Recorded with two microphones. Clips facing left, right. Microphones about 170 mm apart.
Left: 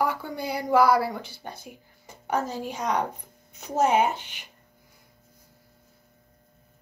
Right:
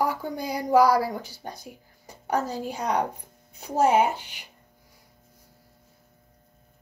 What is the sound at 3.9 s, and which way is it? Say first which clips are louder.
Speech: right 1 dB; 10° right (ahead or behind).